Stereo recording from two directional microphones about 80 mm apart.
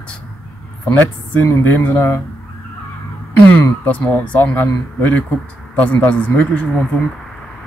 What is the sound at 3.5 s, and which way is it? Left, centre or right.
Speech, left.